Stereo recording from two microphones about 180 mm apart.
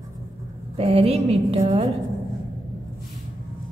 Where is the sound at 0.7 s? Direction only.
35° right (ahead or behind).